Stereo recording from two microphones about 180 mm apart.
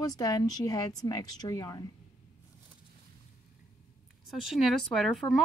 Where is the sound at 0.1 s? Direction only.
20° left (ahead or behind).